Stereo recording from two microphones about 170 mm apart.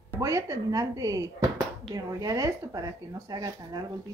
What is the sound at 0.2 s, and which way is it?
Speech, 20° right (ahead or behind).